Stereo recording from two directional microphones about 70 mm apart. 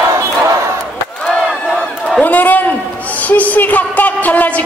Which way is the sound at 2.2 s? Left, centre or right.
Left.